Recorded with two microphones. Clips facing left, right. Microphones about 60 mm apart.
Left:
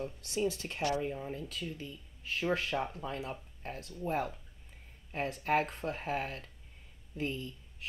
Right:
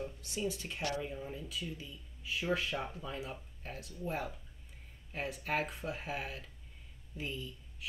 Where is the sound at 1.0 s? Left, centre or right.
Left.